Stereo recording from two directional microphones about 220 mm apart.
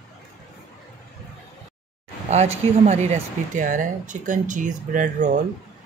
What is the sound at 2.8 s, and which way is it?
Speech, 30° right (ahead or behind).